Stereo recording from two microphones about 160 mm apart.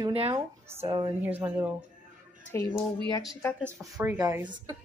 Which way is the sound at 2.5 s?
15° left (ahead or behind).